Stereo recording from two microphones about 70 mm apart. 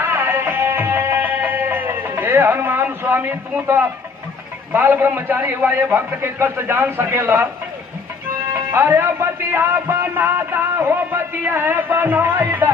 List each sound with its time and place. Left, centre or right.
0.0 s music: right
4.7 s a man's voice: right
8.5 s a man's voice: right